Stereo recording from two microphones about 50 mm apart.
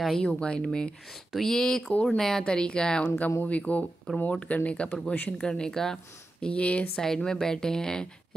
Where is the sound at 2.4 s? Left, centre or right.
Centre.